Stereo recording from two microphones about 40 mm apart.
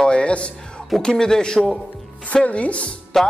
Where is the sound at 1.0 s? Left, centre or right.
Centre.